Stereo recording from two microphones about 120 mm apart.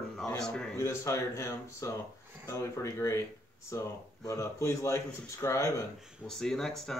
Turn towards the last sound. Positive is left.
turn(degrees=5)  # may be behind; listen again after turning